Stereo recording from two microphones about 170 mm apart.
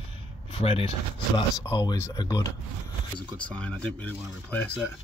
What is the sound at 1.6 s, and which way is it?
Speech, 20° left (ahead or behind).